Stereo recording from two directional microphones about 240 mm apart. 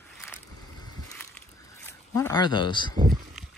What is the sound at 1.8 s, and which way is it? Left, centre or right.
Speech, centre.